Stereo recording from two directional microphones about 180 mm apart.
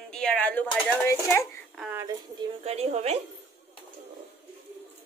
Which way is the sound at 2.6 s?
35° right (ahead or behind).